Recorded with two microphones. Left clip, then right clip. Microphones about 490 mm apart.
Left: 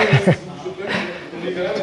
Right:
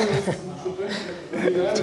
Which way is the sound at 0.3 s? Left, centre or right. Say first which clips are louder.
Left 10 dB; left.